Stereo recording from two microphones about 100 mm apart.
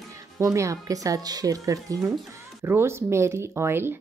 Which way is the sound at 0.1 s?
30° right (ahead or behind).